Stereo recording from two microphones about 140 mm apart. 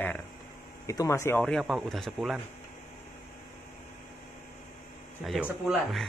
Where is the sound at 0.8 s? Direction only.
20° left (ahead or behind).